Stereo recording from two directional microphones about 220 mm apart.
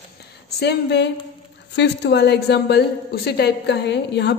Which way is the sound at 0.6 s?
50° left (ahead or behind).